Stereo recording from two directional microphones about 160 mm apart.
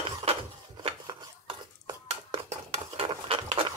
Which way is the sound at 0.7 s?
25° right (ahead or behind).